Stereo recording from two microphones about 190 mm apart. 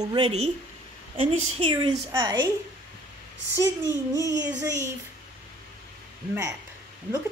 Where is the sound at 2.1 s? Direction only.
20° right (ahead or behind).